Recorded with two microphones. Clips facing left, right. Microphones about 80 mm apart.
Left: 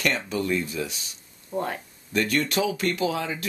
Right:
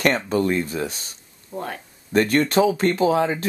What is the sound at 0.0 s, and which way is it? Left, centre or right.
Speech, right.